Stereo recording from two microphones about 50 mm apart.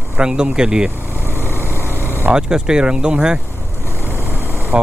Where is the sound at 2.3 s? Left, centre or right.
Centre.